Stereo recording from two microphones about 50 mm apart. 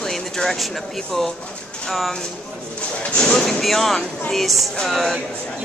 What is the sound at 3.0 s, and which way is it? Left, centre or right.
Speech, centre.